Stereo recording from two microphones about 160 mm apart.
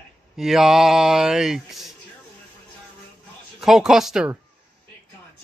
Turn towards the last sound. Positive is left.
turn(degrees=-5)  # may be behind; listen again after turning